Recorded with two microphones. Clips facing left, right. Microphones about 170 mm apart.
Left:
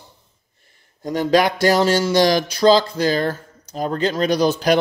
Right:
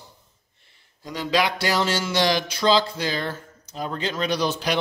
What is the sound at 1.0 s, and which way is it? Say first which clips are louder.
Speech: left 7 dB; 50° left (ahead or behind).